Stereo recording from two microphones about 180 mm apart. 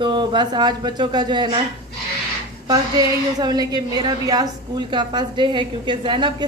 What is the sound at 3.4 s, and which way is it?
A woman's voice, 20° right (ahead or behind).